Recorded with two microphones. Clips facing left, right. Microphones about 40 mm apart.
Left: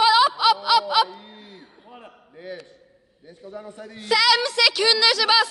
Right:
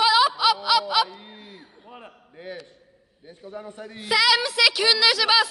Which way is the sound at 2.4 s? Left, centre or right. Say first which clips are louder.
Left 1 dB; right.